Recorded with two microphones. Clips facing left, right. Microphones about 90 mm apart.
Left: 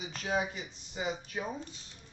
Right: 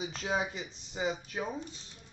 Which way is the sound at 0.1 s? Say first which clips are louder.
Left 4 dB; 30° right (ahead or behind).